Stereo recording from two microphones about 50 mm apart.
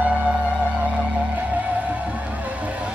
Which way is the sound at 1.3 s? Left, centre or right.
Right.